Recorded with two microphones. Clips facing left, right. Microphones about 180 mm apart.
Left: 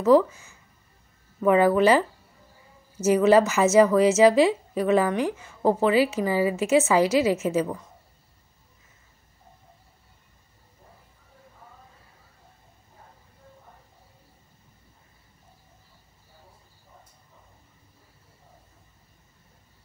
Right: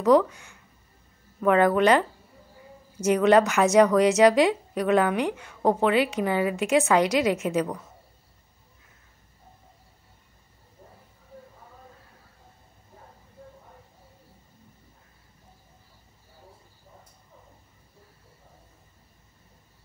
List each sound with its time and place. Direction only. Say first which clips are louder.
0.0 s a woman's voice: left 1 dB; 5° left (ahead or behind)